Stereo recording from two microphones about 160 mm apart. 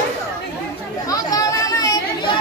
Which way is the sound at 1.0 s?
20° left (ahead or behind).